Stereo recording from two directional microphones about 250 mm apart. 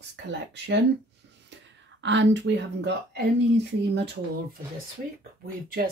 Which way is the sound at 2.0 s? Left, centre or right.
Right.